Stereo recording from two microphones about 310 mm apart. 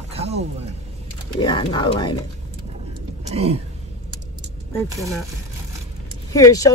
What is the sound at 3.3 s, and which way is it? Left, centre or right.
Speech, centre.